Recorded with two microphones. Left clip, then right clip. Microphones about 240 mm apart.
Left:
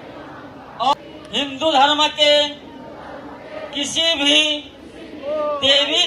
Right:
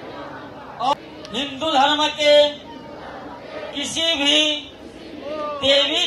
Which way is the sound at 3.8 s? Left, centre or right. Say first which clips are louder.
Left 3 dB; left.